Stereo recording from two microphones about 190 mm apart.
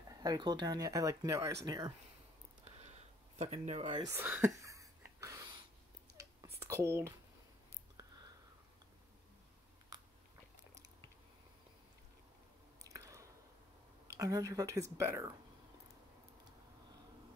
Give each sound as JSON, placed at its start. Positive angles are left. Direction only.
{"t": 0.2, "sound": "speech", "side_deg": -20}
{"t": 3.3, "sound": "speech", "side_deg": -35}
{"t": 4.1, "sound": "speech", "side_deg": -10}
{"t": 4.6, "sound": "a sound", "side_deg": -15}
{"t": 6.7, "sound": "speech", "side_deg": -15}
{"t": 12.8, "sound": "squish", "side_deg": -15}
{"t": 14.0, "sound": "speech", "side_deg": -15}